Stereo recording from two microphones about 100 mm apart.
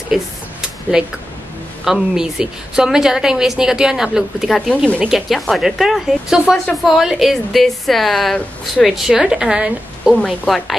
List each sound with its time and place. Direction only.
0.1 s a sound: 5° right (ahead or behind)
1.9 s a woman's voice: 5° right (ahead or behind)
4.8 s speech: 15° right (ahead or behind)
5.1 s a woman's voice: centre (ahead or behind)
10.1 s a woman's voice: 5° left (ahead or behind)